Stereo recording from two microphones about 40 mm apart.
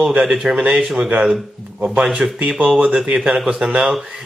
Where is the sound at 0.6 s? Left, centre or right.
Right.